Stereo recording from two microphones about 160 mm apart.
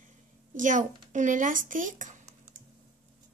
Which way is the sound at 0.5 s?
55° right (ahead or behind).